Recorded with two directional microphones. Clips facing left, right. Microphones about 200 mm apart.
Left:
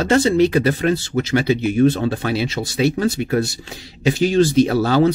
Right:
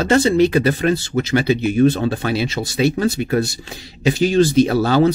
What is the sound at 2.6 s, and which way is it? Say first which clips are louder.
Speech: right 1 dB; 5° right (ahead or behind).